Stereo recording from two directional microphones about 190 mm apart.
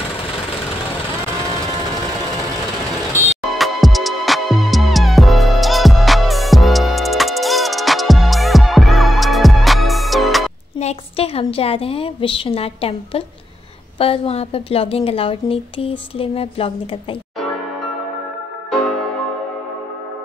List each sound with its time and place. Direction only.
3.5 s music: centre (ahead or behind)
10.8 s a woman's voice: 35° left (ahead or behind)